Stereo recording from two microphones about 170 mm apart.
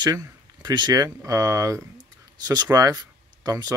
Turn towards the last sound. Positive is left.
turn(degrees=-25)  # may be behind; listen again after turning